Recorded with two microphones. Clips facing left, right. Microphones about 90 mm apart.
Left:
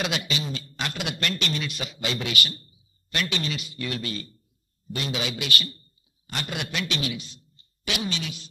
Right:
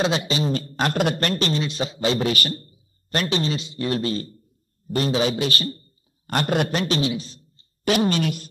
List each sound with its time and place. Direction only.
0.0 s a man's voice: 30° right (ahead or behind); by 8.5 s 50° right (ahead or behind)